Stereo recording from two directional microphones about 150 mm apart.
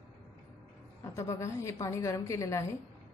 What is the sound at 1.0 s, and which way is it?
A woman's voice, 20° left (ahead or behind).